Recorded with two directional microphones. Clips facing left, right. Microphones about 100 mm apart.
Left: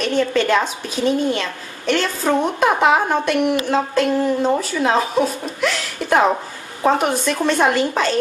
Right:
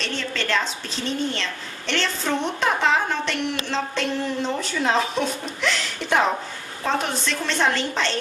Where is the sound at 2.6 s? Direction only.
10° left (ahead or behind).